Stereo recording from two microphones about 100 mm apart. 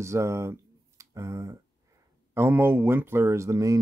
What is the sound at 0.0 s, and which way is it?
Speech, 30° right (ahead or behind).